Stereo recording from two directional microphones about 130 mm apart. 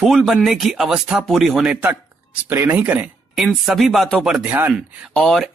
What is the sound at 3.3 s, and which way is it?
Speech, centre (ahead or behind).